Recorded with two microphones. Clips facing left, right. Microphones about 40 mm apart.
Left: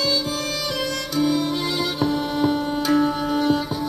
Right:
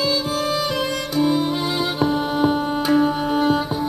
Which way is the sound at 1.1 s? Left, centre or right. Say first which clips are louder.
Right 2 dB; centre.